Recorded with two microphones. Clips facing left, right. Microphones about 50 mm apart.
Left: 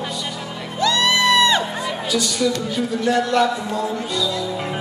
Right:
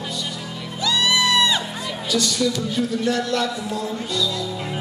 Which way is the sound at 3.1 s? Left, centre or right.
Left.